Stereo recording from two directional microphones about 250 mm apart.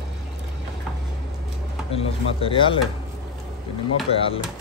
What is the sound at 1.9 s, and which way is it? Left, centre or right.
Speech, left.